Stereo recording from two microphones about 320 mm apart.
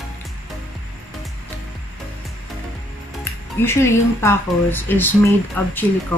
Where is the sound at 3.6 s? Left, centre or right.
Centre.